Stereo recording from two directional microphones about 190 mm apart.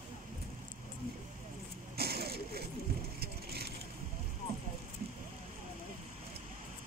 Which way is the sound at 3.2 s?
55° right (ahead or behind).